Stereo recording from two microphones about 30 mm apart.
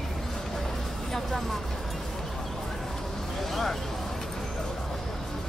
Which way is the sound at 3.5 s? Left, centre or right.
Centre.